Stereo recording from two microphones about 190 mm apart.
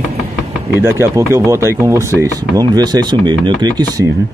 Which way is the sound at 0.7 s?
10° right (ahead or behind).